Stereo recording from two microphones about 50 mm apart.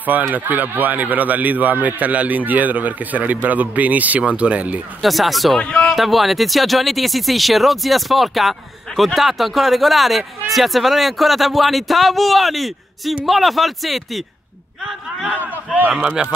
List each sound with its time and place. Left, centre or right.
0.3 s a man's voice: right
5.0 s speech: centre
5.6 s a man's voice: left
5.9 s speech: centre
14.8 s a sound: centre
15.3 s speech: right
16.2 s speech: centre